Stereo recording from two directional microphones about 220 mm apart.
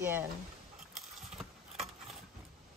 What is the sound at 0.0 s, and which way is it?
Speech, 10° right (ahead or behind).